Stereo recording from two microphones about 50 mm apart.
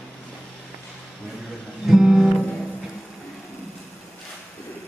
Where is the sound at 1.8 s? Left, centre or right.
Centre.